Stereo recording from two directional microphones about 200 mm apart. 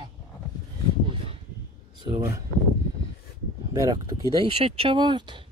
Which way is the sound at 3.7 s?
15° right (ahead or behind).